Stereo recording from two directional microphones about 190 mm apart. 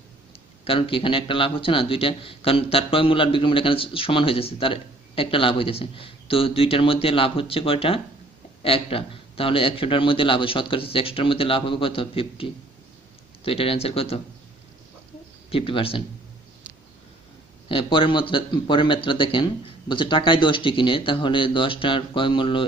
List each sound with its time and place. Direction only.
0.7 s a man's voice: 25° left (ahead or behind)
15.5 s a man's voice: 30° left (ahead or behind)
17.6 s a man's voice: 25° left (ahead or behind)